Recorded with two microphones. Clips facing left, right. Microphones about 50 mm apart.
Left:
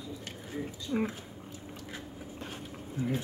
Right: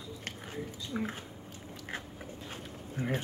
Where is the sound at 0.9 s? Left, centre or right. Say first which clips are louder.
Left 5 dB; left.